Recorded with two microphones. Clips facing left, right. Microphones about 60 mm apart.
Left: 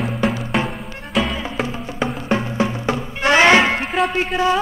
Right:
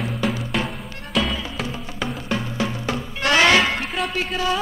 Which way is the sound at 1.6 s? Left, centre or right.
Left.